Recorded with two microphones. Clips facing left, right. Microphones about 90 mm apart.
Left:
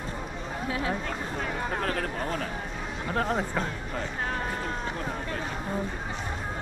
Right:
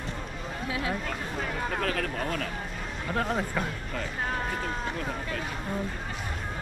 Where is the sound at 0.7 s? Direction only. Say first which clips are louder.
Left 1 dB; 40° left (ahead or behind).